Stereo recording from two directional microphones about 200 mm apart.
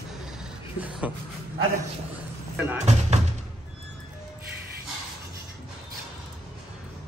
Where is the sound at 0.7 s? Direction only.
5° right (ahead or behind).